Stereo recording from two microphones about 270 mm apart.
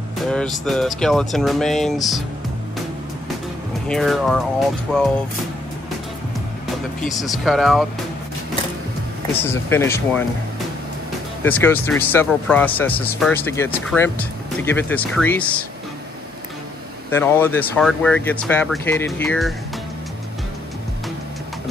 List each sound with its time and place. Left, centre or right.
0.2 s speech: centre
3.8 s speech: centre
7.0 s speech: centre
9.3 s speech: centre
11.4 s speech: centre
17.1 s speech: centre